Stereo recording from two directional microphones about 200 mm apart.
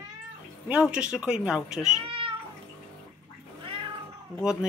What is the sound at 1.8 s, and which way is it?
Cat, 25° right (ahead or behind).